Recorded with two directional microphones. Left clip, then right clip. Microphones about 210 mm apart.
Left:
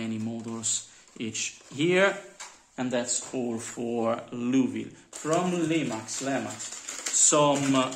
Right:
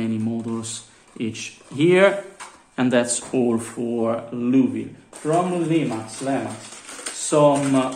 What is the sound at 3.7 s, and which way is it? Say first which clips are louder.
Speech: right 5 dB; 20° left (ahead or behind).